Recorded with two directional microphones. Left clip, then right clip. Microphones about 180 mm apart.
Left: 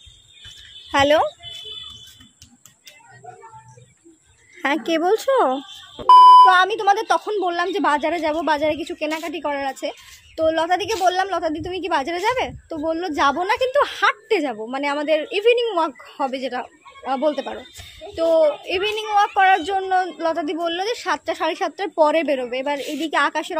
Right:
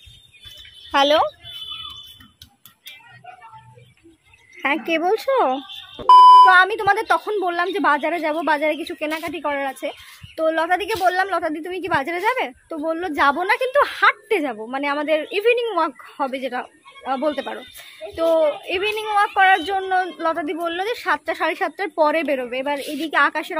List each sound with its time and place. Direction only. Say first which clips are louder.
0.9 s speech: even; 15° left (ahead or behind)
4.6 s speech: even; 20° left (ahead or behind)
5.6 s speech: right 1 dB; centre (ahead or behind)